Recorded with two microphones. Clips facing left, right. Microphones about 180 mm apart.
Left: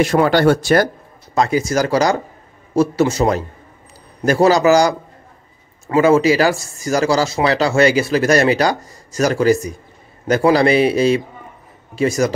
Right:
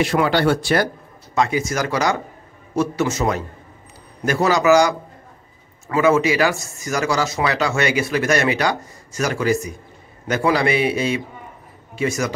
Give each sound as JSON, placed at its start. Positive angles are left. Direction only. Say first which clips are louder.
{"t": 0.0, "sound": "speech", "louder": "left 4 dB", "side_deg": 45}